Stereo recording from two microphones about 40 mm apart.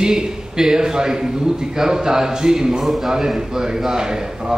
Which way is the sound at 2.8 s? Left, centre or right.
Centre.